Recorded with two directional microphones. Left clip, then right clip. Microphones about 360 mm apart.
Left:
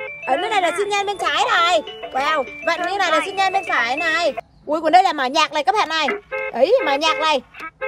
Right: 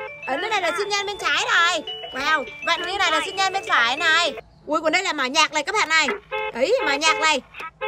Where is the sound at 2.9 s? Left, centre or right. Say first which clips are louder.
Left 3 dB; centre.